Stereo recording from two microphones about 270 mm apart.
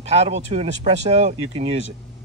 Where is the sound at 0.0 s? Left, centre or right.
Right.